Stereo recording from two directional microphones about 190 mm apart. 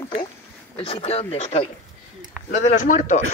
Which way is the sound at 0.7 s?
30° left (ahead or behind).